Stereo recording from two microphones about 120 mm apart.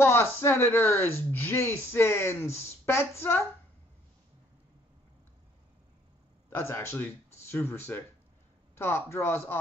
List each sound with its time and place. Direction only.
0.0 s speech: 20° left (ahead or behind)
6.5 s speech: 20° left (ahead or behind)